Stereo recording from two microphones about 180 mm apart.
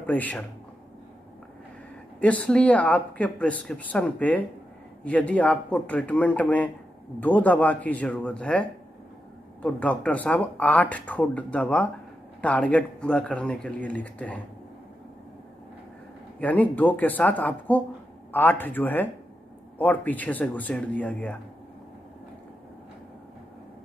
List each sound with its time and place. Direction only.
0.0 s speech: 10° left (ahead or behind)
2.1 s speech: 5° left (ahead or behind)
16.3 s speech: 10° left (ahead or behind)